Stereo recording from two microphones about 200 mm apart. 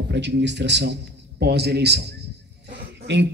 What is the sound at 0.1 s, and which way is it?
A man's voice, 60° right (ahead or behind).